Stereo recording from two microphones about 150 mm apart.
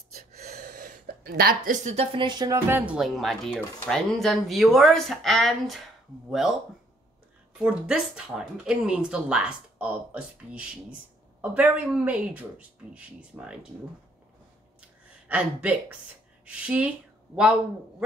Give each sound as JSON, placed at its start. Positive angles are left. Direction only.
{"t": 0.1, "sound": "gasp", "side_deg": -90}
{"t": 2.1, "sound": "music", "side_deg": -30}
{"t": 2.7, "sound": "speech", "side_deg": -10}
{"t": 7.5, "sound": "speech", "side_deg": -5}
{"t": 14.8, "sound": "a sound", "side_deg": -10}
{"t": 16.4, "sound": "speech", "side_deg": -10}